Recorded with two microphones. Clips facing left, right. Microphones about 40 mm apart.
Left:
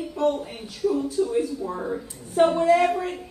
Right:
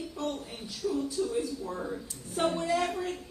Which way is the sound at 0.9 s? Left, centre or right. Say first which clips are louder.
Left 7 dB; centre.